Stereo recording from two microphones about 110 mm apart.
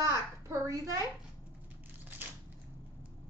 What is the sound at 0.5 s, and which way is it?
Speech, 30° right (ahead or behind).